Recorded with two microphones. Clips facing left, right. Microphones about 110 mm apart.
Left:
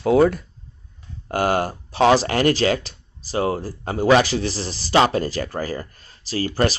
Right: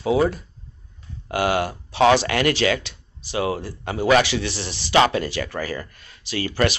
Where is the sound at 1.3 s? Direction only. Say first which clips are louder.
Left 1 dB; 40° left (ahead or behind).